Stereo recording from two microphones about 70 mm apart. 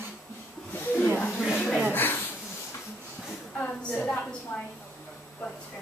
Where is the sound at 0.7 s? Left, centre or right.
Left.